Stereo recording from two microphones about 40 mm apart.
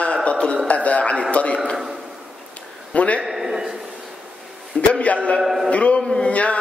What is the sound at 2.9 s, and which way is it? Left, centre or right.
Speech, left.